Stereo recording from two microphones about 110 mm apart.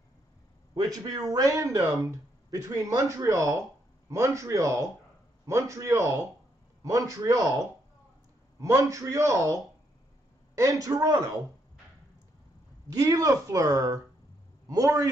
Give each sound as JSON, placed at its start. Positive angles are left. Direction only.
{"t": 0.7, "sound": "a man's voice", "side_deg": -35}
{"t": 12.9, "sound": "speech", "side_deg": -35}